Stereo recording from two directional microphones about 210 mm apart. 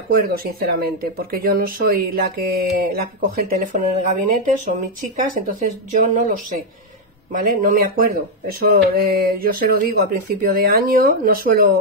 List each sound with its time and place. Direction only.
0.1 s speech: 45° right (ahead or behind)
7.3 s speech: 40° right (ahead or behind)